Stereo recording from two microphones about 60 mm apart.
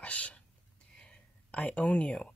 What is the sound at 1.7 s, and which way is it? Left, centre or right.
Speech, left.